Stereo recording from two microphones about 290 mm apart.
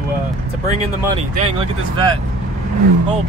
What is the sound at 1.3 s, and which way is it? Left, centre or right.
Speech, centre.